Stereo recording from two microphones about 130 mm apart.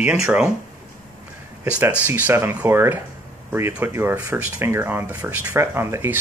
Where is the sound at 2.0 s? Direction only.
20° right (ahead or behind).